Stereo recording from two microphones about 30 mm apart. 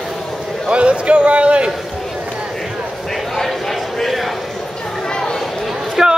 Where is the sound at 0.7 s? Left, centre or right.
Right.